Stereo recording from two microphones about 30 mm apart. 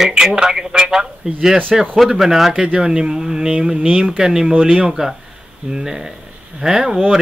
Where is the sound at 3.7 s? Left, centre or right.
Right.